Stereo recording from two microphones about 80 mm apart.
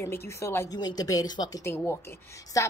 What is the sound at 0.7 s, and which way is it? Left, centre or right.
Speech, left.